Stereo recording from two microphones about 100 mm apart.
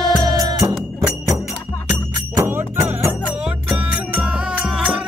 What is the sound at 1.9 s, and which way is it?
Music, 20° right (ahead or behind).